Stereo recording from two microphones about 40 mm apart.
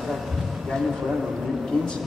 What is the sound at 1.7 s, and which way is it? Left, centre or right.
Speech, left.